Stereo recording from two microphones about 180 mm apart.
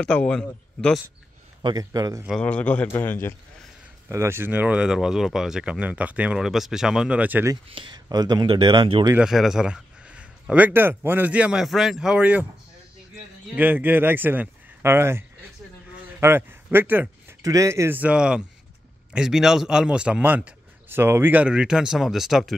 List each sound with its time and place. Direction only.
0.0 s speech: 5° left (ahead or behind)
1.6 s speech: 20° right (ahead or behind)
2.2 s a man's voice: 5° left (ahead or behind)
4.1 s speech: 15° right (ahead or behind)
7.6 s speech: 30° right (ahead or behind)
9.1 s a man's voice: 5° right (ahead or behind)
13.6 s a man's voice: 10° right (ahead or behind)